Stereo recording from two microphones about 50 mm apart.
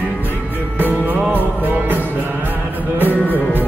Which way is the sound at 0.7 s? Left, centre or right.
Right.